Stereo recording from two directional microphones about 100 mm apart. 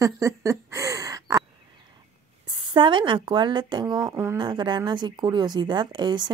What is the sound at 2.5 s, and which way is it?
Speech, 50° right (ahead or behind).